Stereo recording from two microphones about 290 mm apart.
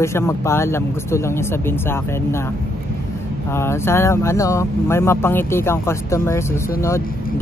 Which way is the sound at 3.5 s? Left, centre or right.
Centre.